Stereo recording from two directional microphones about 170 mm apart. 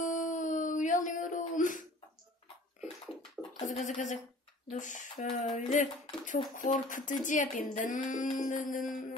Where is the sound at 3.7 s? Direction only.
45° left (ahead or behind).